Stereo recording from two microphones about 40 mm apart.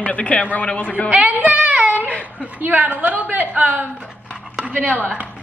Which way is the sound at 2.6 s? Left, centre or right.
Right.